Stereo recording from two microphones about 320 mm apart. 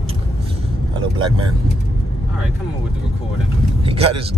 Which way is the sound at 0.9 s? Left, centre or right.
Centre.